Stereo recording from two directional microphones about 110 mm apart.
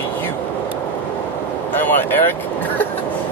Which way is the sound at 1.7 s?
20° left (ahead or behind).